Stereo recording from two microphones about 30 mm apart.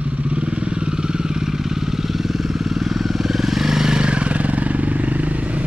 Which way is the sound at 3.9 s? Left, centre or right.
Right.